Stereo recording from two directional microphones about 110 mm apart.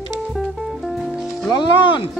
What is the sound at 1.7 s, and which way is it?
Speech, 45° left (ahead or behind).